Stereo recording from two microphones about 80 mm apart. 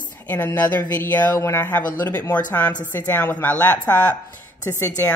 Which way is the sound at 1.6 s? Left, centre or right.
Left.